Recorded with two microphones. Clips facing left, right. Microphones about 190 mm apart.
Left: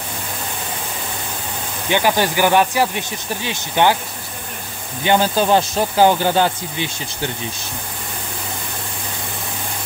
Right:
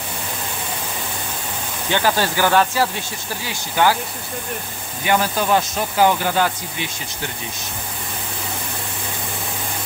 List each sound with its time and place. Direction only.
1.9 s speech: 15° left (ahead or behind)
5.0 s speech: 25° left (ahead or behind)